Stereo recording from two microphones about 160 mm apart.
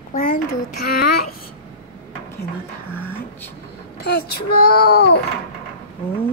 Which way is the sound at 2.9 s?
15° left (ahead or behind).